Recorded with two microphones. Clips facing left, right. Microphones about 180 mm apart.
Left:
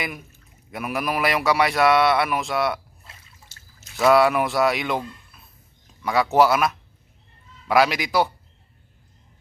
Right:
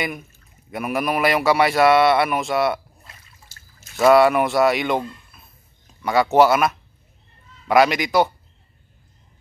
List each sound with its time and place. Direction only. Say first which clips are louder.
0.7 s speech: right 3 dB; centre (ahead or behind)
3.1 s water: left 1 dB; 20° left (ahead or behind)
3.9 s speech: right 3 dB; centre (ahead or behind)